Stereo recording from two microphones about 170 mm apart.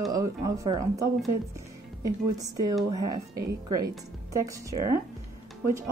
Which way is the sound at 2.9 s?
20° right (ahead or behind).